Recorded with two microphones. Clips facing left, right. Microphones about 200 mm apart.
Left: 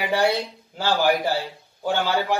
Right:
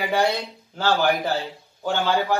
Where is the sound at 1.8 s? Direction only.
15° left (ahead or behind).